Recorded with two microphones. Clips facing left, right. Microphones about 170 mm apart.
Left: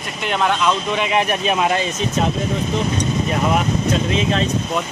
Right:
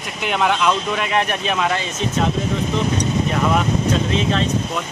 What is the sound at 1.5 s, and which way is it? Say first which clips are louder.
Speech: left 1 dB; 20° left (ahead or behind).